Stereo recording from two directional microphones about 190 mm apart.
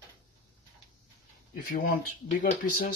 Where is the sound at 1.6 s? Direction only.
50° left (ahead or behind).